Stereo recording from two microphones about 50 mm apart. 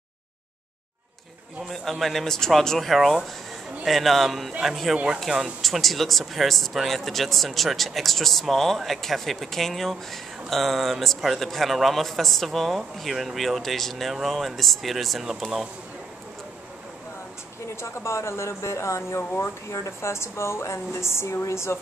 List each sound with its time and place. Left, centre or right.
1.7 s speech: centre
4.9 s speech: centre
5.6 s speech: centre
17.7 s speech: left
19.7 s a woman's voice: left